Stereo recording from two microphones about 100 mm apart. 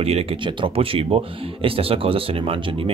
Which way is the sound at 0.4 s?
55° right (ahead or behind).